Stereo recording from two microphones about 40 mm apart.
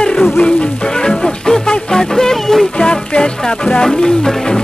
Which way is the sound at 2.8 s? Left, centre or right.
Centre.